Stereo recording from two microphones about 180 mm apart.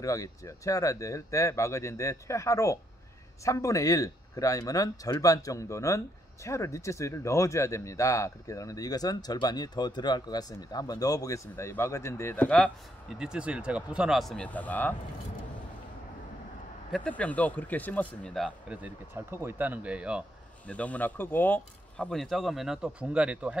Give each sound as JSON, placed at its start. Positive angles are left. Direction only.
{"t": 0.0, "sound": "speech", "side_deg": 20}
{"t": 13.2, "sound": "speech", "side_deg": -5}
{"t": 16.9, "sound": "speech", "side_deg": 5}
{"t": 20.6, "sound": "speech", "side_deg": 10}